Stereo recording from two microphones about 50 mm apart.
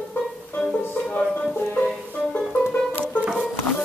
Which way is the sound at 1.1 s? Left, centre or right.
Left.